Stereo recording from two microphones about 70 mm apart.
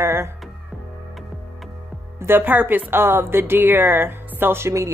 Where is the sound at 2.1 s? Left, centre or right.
Right.